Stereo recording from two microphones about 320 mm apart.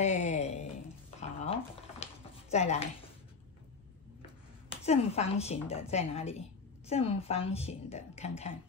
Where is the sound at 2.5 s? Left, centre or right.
Left.